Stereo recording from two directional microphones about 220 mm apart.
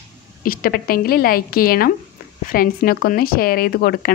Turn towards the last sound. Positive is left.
turn(degrees=45)  # may be behind; listen again after turning